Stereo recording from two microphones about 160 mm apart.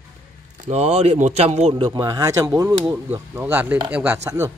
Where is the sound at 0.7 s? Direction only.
45° right (ahead or behind).